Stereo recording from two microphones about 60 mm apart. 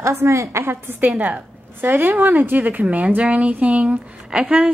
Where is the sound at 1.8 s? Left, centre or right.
Right.